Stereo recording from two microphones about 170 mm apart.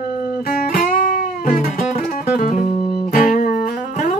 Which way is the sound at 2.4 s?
50° left (ahead or behind).